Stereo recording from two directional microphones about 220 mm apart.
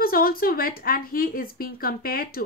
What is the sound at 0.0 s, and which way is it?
A woman's voice, 40° left (ahead or behind).